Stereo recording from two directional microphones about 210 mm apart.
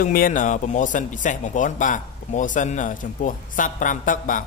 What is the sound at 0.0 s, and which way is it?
Speech, 40° left (ahead or behind).